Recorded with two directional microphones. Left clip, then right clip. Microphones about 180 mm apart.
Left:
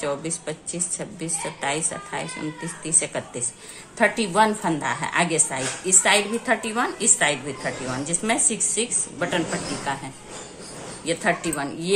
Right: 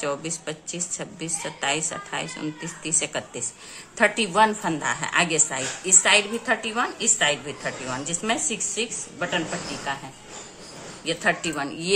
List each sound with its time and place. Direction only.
0.0 s a woman's voice: 20° right (ahead or behind)
11.1 s a woman's voice: 15° right (ahead or behind)